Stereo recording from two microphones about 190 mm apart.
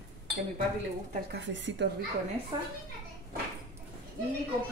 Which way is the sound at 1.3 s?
70° right (ahead or behind).